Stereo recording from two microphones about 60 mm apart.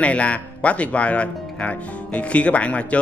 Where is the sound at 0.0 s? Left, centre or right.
Left.